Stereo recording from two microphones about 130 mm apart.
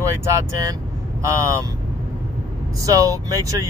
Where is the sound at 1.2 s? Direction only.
25° right (ahead or behind).